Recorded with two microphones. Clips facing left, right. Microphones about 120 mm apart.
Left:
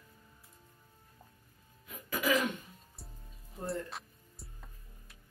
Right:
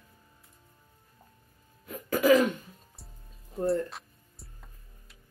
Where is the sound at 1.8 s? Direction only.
40° right (ahead or behind).